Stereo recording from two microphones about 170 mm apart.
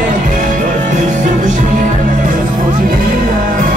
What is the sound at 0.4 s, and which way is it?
Music, 45° right (ahead or behind).